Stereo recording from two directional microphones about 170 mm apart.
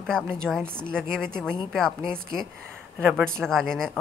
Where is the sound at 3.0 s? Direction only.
Centre (ahead or behind).